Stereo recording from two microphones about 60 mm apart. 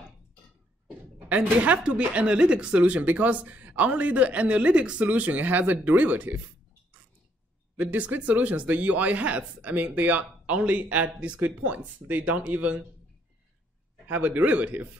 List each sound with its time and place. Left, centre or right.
0.8 s speech: right
7.7 s speech: right
14.0 s speech: right